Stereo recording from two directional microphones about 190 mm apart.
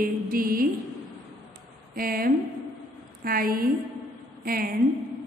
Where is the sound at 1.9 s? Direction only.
50° right (ahead or behind).